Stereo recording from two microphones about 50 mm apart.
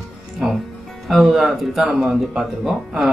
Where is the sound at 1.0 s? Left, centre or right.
Centre.